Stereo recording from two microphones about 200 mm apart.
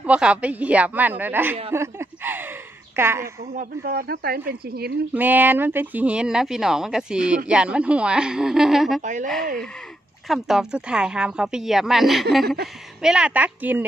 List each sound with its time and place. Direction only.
0.0 s a woman's voice: 5° right (ahead or behind)
3.5 s speech: 45° right (ahead or behind)
5.1 s speech: 10° right (ahead or behind)
9.0 s speech: 40° right (ahead or behind)
10.2 s a woman's voice: centre (ahead or behind)